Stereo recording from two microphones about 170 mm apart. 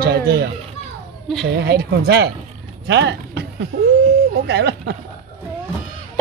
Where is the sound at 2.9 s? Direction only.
90° right.